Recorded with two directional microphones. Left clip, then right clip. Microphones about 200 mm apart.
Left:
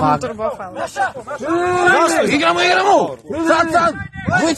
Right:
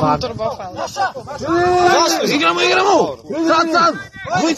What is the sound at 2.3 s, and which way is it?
Speech, 50° left (ahead or behind).